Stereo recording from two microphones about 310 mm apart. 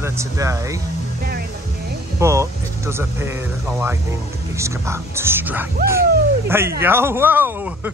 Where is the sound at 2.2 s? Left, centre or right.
Centre.